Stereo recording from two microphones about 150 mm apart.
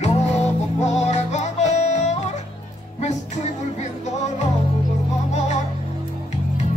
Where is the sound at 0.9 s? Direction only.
50° left (ahead or behind).